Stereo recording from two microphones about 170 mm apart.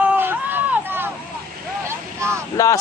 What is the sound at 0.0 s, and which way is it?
Hubbub, 10° right (ahead or behind).